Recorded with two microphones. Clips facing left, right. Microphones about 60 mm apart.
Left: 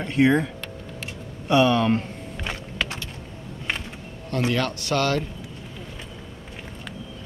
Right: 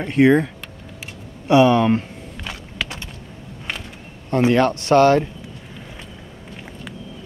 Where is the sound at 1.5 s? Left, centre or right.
Centre.